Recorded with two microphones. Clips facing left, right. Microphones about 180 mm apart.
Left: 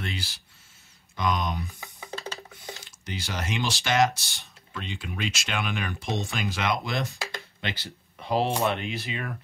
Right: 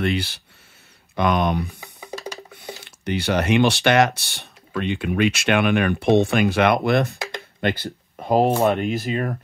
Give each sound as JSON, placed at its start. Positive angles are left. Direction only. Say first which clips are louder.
{"t": 0.0, "sound": "speech", "louder": "right 12 dB", "side_deg": -65}
{"t": 1.8, "sound": "music", "louder": "right 4 dB", "side_deg": -15}
{"t": 2.8, "sound": "speech", "louder": "right 16 dB", "side_deg": -65}
{"t": 7.2, "sound": "a sound", "louder": "right 5 dB", "side_deg": -20}
{"t": 7.6, "sound": "speech", "louder": "right 13 dB", "side_deg": -50}